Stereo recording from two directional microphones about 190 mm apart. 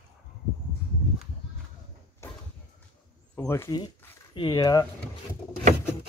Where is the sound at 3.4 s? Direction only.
15° left (ahead or behind).